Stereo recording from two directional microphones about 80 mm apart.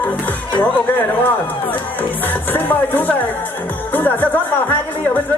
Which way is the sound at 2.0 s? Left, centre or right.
Left.